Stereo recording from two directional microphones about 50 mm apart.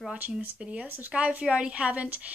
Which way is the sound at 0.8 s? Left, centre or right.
Right.